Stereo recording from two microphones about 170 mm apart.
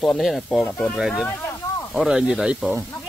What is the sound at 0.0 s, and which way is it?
Speech, centre (ahead or behind).